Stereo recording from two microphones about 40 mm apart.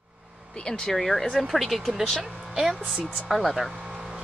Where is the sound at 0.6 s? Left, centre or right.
Left.